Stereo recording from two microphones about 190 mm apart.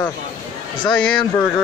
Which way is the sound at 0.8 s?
5° left (ahead or behind).